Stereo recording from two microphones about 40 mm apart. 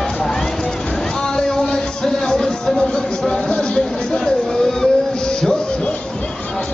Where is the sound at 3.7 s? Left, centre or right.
Centre.